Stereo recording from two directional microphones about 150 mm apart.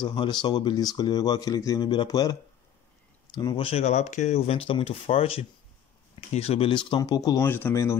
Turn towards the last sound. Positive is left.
turn(degrees=15)  # may be behind; listen again after turning